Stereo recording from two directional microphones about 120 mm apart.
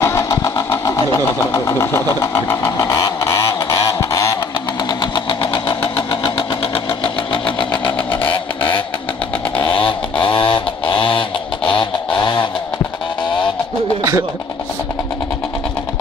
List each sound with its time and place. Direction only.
0.0 s engine: 25° left (ahead or behind)
4.8 s engine: 35° left (ahead or behind)
9.6 s a sound: 45° left (ahead or behind)